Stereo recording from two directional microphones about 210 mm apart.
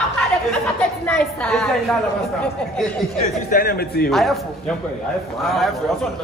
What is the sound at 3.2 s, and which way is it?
Speech, 40° left (ahead or behind).